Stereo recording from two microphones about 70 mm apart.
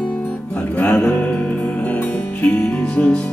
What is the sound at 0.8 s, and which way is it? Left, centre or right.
Music, left.